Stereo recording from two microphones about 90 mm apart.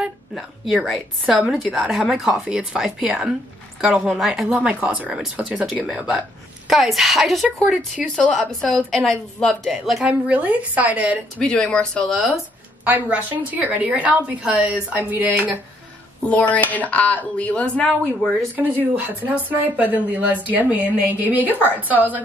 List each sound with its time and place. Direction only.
0.8 s a woman's voice: centre (ahead or behind)
10.0 s a woman's voice: 15° right (ahead or behind)
11.3 s a woman's voice: 10° left (ahead or behind)
12.8 s a woman's voice: 20° right (ahead or behind)
16.2 s a woman's voice: 15° left (ahead or behind)
18.6 s speech: 20° right (ahead or behind)